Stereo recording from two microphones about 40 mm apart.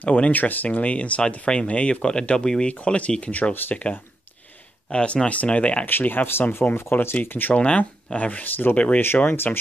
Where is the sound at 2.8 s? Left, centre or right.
Left.